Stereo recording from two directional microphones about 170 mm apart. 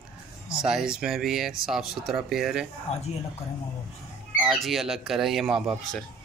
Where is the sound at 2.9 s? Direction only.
40° left (ahead or behind).